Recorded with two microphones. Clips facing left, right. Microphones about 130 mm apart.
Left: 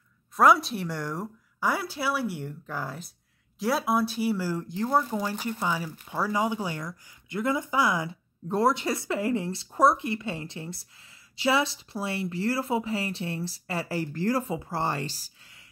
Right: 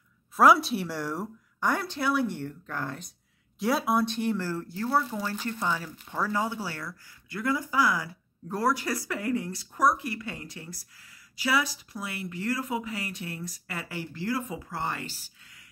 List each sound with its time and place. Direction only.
0.4 s speech: centre (ahead or behind); by 14.4 s 40° left (ahead or behind)
14.5 s a woman's voice: 30° left (ahead or behind)